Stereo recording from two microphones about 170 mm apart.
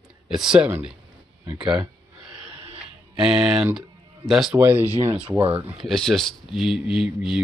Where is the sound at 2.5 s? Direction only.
35° right (ahead or behind).